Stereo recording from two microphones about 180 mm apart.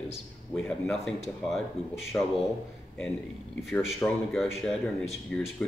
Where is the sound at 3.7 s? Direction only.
10° left (ahead or behind).